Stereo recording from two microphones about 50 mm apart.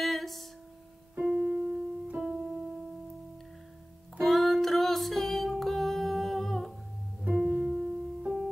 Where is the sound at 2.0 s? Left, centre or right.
Right.